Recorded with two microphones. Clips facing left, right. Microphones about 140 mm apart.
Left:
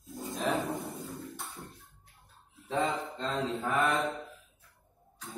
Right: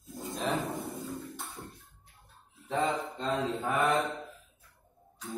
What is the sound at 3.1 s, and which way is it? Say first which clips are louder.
Mantra: right 1 dB; 20° right (ahead or behind).